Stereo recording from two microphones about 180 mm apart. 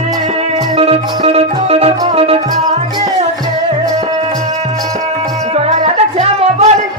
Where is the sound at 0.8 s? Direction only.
35° right (ahead or behind).